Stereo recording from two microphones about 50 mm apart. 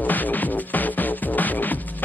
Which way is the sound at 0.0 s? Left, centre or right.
Left.